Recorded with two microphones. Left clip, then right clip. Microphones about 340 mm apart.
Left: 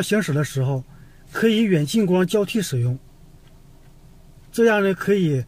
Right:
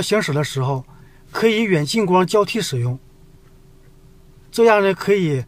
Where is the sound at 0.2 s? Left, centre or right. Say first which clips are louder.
Right 3 dB; centre.